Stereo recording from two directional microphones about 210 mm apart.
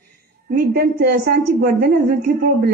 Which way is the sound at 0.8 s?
45° right (ahead or behind).